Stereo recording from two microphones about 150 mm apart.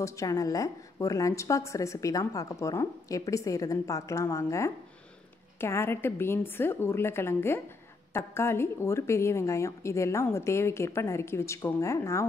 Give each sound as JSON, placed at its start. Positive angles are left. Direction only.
{"t": 0.0, "sound": "a woman's voice", "side_deg": 20}